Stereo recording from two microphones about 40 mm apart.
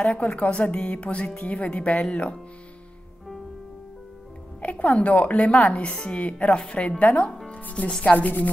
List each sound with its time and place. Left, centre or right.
0.2 s speech: left
1.2 s speech: left
1.8 s speech: left
4.6 s speech: left
7.0 s speech: left
7.5 s music: left
8.0 s speech: left